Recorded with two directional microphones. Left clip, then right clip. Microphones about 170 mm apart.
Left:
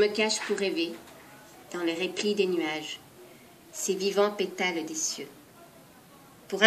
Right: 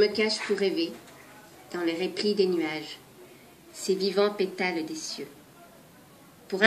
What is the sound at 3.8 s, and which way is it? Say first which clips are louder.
A woman's voice: right 1 dB; 35° left (ahead or behind).